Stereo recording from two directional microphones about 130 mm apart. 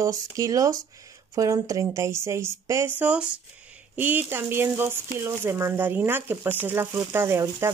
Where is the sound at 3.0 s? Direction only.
10° right (ahead or behind).